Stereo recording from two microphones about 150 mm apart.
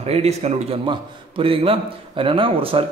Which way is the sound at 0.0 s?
45° right (ahead or behind).